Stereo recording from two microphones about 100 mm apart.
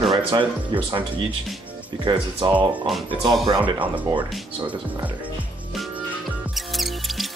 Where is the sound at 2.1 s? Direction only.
55° right (ahead or behind).